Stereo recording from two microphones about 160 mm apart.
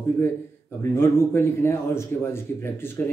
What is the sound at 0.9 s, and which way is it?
A man's voice, 15° left (ahead or behind).